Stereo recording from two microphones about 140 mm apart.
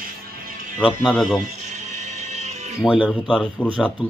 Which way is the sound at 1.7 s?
55° right (ahead or behind).